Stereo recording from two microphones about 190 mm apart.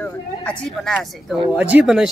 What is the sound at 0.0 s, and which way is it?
Speech, 5° left (ahead or behind).